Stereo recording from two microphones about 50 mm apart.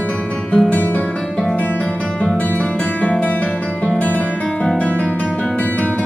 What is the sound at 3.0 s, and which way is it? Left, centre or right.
Music, left.